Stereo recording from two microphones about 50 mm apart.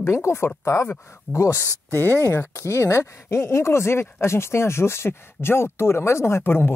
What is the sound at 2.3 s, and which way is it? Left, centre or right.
Speech, left.